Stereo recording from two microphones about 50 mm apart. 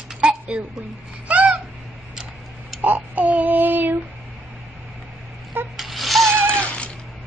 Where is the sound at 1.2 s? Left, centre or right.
Right.